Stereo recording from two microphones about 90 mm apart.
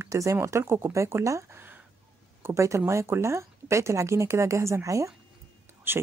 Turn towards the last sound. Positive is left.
turn(degrees=-25)  # may be behind; listen again after turning